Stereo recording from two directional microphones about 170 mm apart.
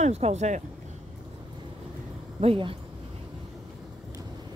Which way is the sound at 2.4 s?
35° right (ahead or behind).